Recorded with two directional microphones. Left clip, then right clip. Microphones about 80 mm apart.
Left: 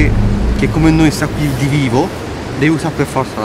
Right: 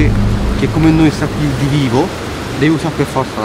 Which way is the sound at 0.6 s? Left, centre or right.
Centre.